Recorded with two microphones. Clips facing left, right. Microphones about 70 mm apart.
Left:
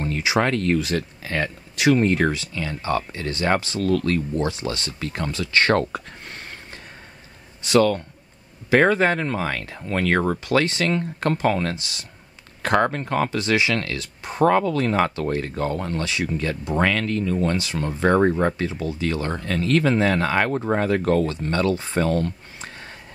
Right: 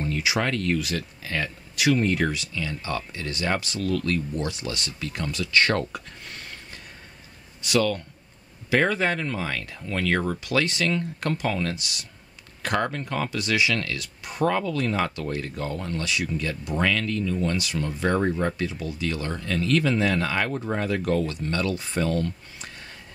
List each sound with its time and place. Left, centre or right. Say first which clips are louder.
0.0 s speech: left 4 dB; left
11.7 s speech: left 2 dB; left
16.0 s speech: left 3 dB; left